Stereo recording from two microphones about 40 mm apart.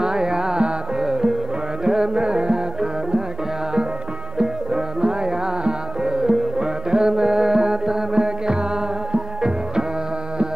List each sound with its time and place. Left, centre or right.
0.0 s music: centre
4.4 s music: centre